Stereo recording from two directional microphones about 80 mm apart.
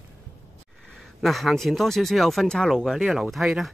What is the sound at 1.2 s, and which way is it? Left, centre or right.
Speech, centre.